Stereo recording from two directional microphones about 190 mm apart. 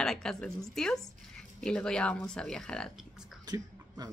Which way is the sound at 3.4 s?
20° right (ahead or behind).